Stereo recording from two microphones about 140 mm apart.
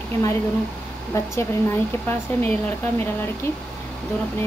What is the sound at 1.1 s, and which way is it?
Speech, 20° left (ahead or behind).